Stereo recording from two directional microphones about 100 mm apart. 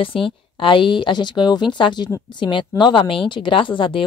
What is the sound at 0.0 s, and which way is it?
A woman's voice, 60° left (ahead or behind).